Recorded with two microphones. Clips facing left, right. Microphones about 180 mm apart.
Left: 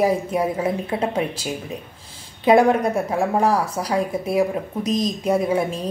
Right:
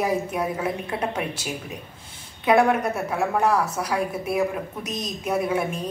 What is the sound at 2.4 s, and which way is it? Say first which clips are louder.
A woman's voice: left 4 dB; 30° left (ahead or behind).